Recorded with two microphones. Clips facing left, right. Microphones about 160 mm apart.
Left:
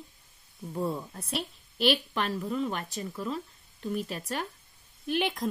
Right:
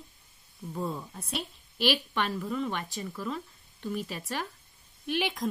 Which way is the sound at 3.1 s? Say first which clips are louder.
Left 1 dB; 25° left (ahead or behind).